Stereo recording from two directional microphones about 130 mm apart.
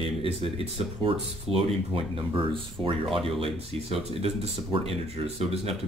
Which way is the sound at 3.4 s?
50° right (ahead or behind).